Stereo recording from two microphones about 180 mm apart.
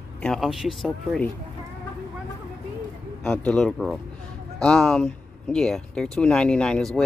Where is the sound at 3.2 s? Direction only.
5° left (ahead or behind).